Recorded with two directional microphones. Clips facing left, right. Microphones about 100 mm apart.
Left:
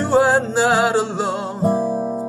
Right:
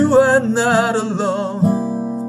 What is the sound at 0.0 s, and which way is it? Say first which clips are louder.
Music: right 4 dB; centre (ahead or behind).